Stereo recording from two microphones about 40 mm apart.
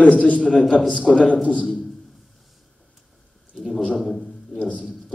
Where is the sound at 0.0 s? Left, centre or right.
Left.